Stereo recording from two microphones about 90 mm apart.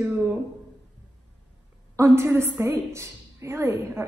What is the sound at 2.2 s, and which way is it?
A woman's voice, 25° right (ahead or behind).